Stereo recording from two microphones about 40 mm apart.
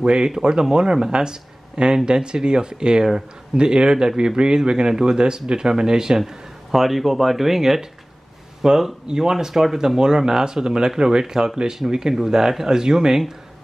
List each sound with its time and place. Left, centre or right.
0.0 s speech: centre
6.7 s speech: centre